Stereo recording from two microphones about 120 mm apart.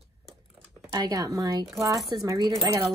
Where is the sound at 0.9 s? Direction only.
35° right (ahead or behind).